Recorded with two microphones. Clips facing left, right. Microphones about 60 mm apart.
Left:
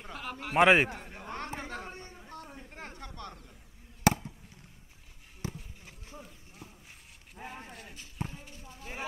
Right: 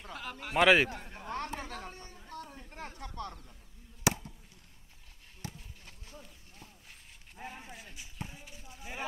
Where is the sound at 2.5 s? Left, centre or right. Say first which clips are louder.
Even; centre.